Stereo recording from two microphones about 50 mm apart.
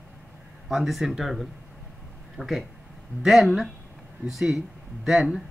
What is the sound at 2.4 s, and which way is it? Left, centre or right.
Speech, centre.